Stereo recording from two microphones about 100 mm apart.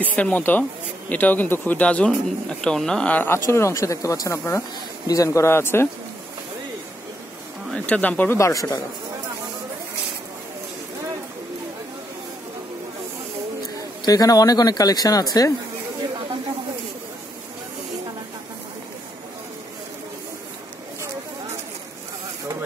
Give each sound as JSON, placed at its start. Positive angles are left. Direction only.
{"t": 0.0, "sound": "speech", "side_deg": 15}
{"t": 3.4, "sound": "speech", "side_deg": 30}
{"t": 7.7, "sound": "speech", "side_deg": 10}
{"t": 8.4, "sound": "speech", "side_deg": 35}
{"t": 14.0, "sound": "speech", "side_deg": 40}